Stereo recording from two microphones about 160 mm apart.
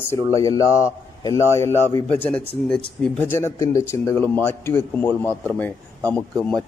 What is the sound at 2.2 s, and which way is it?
A man's voice, 5° left (ahead or behind).